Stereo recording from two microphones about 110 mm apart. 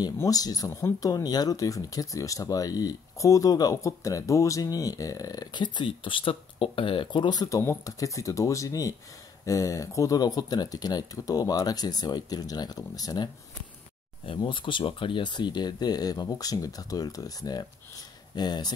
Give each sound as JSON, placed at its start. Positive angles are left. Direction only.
{"t": 0.2, "sound": "speech", "side_deg": 35}
{"t": 14.2, "sound": "speech", "side_deg": 50}